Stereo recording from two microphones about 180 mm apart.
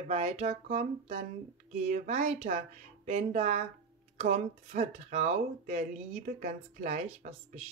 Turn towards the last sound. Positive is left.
turn(degrees=-40)  # may be behind; listen again after turning